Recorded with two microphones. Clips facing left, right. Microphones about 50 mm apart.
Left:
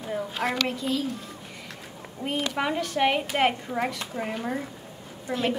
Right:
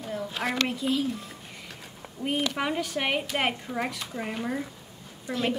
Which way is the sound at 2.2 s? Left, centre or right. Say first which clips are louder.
Right 1 dB; left.